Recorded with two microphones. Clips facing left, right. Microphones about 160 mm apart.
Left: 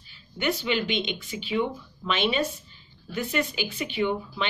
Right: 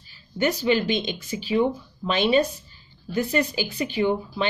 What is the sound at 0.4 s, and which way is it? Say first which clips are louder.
Speech: right 5 dB; 40° right (ahead or behind).